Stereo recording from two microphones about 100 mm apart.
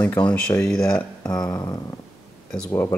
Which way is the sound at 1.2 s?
40° left (ahead or behind).